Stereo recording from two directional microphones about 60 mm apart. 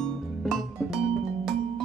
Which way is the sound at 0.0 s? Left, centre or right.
Centre.